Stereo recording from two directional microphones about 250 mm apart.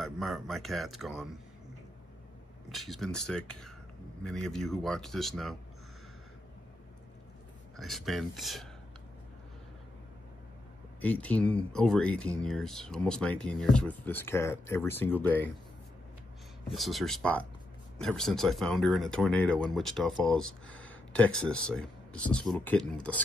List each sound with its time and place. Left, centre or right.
0.0 s speech: centre
2.7 s speech: centre
7.7 s speech: centre
11.0 s speech: centre
16.7 s speech: centre